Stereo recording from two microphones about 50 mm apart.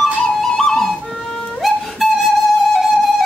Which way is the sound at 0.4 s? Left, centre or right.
Centre.